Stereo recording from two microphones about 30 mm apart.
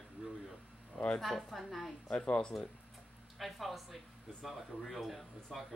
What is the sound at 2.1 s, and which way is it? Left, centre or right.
Speech, left.